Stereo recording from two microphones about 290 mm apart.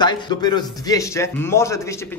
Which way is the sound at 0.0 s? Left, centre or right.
Centre.